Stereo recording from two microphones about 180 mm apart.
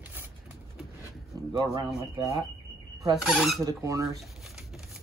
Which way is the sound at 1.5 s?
25° right (ahead or behind).